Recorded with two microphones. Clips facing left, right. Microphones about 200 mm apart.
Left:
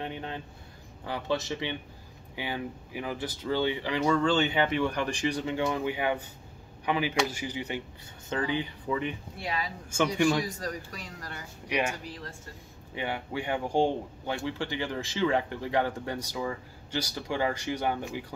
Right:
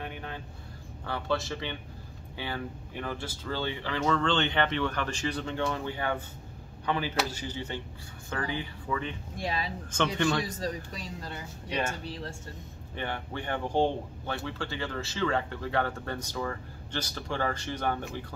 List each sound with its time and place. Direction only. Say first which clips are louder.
0.0 s vehicle: left 3 dB; 25° left (ahead or behind)
1.0 s a man's voice: left 1 dB; 15° left (ahead or behind)
10.6 s speech: right 2 dB; 25° right (ahead or behind)
11.7 s a man's voice: left 2 dB; 15° left (ahead or behind)
12.0 s speech: right 3 dB; 30° right (ahead or behind)
12.9 s a man's voice: left 2 dB; 10° left (ahead or behind)